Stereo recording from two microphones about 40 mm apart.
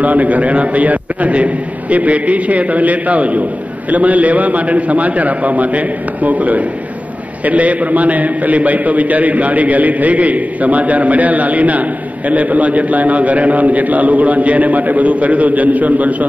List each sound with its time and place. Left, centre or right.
0.0 s a man's voice: right